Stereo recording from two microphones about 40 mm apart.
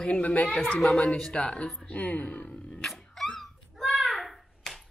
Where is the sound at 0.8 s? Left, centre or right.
Centre; by 2.4 s left.